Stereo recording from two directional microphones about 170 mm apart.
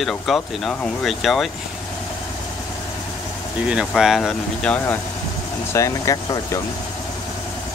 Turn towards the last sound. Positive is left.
turn(degrees=20)  # may be behind; listen again after turning